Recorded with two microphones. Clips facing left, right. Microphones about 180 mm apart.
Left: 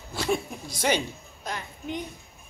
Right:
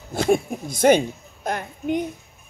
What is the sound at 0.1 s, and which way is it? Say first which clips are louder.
A woman's voice: right 8 dB; 50° right (ahead or behind).